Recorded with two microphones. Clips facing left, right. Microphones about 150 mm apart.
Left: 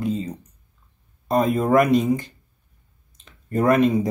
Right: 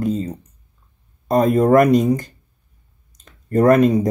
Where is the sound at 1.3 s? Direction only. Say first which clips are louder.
Right 4 dB; 45° right (ahead or behind).